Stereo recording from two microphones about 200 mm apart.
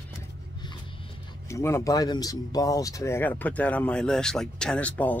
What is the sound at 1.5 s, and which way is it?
Speech, 15° left (ahead or behind).